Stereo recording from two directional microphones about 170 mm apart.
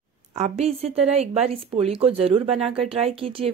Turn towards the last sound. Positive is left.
turn(degrees=-35)  # may be behind; listen again after turning